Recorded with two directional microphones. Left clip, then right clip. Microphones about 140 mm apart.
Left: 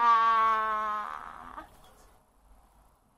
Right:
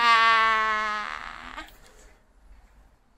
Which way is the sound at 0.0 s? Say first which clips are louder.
Right 4 dB; 20° right (ahead or behind).